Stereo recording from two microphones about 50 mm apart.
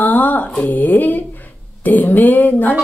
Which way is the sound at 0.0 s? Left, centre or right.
Left.